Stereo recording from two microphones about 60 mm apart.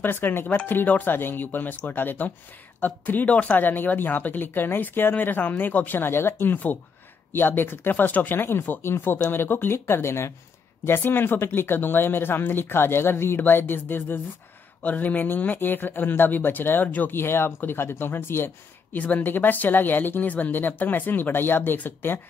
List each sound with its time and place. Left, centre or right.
0.0 s speech: left
17.2 s speech: left
18.9 s speech: left